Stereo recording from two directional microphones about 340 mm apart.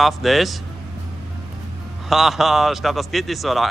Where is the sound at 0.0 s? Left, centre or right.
Centre.